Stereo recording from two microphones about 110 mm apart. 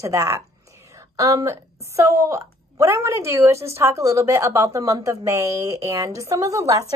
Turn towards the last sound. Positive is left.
turn(degrees=-30)  # may be behind; listen again after turning